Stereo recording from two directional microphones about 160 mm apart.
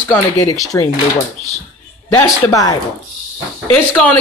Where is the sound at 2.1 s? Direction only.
25° left (ahead or behind).